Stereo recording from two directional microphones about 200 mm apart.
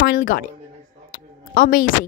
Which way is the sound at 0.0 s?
45° left (ahead or behind).